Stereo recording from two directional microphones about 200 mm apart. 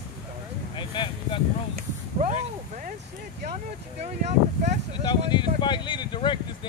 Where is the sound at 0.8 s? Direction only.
25° left (ahead or behind).